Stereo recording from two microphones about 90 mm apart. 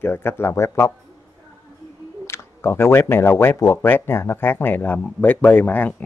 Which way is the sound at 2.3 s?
25° left (ahead or behind).